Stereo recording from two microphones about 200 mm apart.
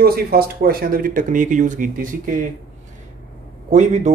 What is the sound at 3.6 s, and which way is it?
Speech, 35° right (ahead or behind).